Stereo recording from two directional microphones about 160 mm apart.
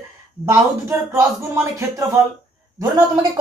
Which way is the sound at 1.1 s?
20° right (ahead or behind).